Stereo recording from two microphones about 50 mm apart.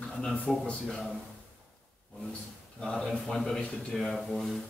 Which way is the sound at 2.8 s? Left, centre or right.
Centre.